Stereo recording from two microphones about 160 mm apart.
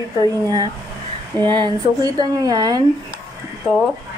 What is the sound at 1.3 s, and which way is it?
Speech, 30° right (ahead or behind).